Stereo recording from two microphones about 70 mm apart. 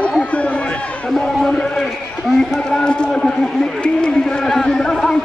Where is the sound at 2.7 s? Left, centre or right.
Centre.